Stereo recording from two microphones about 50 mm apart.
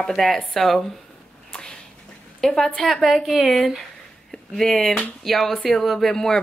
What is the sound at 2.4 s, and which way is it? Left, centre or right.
Speech, centre.